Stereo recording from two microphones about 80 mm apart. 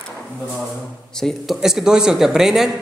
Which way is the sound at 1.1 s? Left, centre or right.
Centre.